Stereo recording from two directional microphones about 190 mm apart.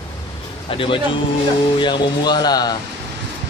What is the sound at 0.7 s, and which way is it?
A man's voice, 25° left (ahead or behind).